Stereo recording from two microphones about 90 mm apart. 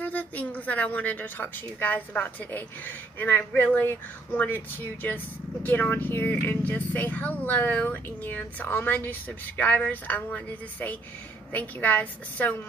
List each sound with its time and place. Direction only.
0.0 s a woman's voice: 15° left (ahead or behind)